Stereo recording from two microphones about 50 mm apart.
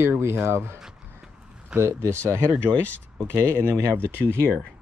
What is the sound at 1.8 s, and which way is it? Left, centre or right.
Speech, right.